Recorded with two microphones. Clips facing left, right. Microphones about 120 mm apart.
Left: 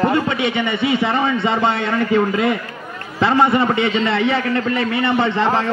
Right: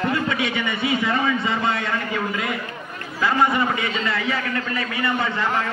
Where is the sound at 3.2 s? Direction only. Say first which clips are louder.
Left 5 dB; 30° left (ahead or behind).